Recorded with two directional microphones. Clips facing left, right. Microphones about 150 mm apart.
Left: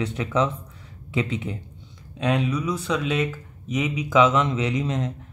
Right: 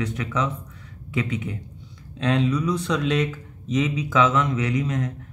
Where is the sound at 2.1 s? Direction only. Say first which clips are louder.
Right 1 dB; 10° left (ahead or behind).